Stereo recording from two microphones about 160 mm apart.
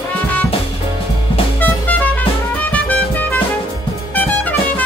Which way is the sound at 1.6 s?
10° left (ahead or behind).